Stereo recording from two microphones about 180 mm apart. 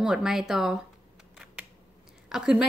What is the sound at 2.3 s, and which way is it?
Speech, 5° right (ahead or behind).